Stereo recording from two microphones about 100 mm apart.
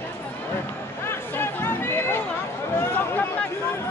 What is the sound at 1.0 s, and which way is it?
Speech, 25° left (ahead or behind).